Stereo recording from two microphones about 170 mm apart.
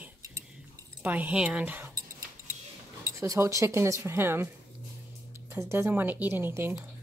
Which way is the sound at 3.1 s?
15° right (ahead or behind).